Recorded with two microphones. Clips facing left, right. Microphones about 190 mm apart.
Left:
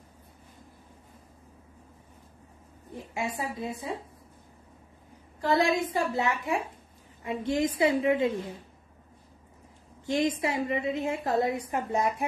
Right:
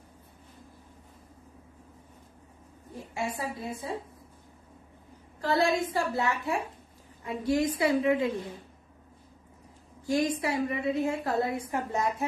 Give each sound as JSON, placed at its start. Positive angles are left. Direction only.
{"t": 2.9, "sound": "a woman's voice", "side_deg": 20}
{"t": 5.4, "sound": "a woman's voice", "side_deg": 15}
{"t": 10.0, "sound": "a woman's voice", "side_deg": 20}